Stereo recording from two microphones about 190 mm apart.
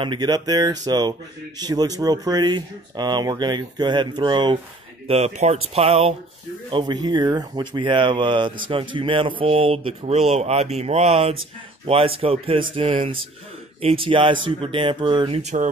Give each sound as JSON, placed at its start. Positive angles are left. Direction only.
{"t": 0.0, "sound": "speech", "side_deg": -25}